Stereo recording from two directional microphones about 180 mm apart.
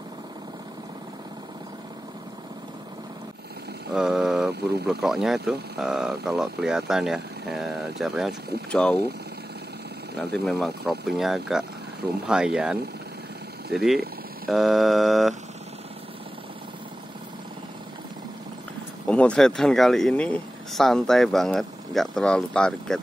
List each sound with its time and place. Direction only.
3.9 s a sound: centre (ahead or behind)
4.5 s speech: 65° right (ahead or behind)
5.0 s speech: centre (ahead or behind)
10.3 s speech: centre (ahead or behind)
19.0 s speech: 5° left (ahead or behind)